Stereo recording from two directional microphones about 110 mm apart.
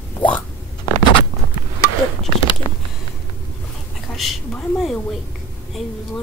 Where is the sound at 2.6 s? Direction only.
55° left (ahead or behind).